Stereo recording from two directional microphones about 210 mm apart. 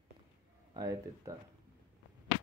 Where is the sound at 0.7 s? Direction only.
15° right (ahead or behind).